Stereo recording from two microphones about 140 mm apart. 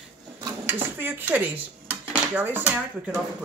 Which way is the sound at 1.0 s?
15° right (ahead or behind).